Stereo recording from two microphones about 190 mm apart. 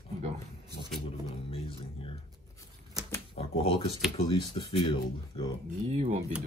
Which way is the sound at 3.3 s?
30° left (ahead or behind).